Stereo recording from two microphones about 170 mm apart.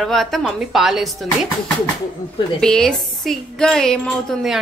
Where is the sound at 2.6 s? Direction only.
5° left (ahead or behind).